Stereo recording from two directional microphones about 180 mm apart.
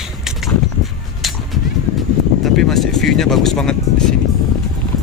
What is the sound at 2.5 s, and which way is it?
Speech, centre (ahead or behind).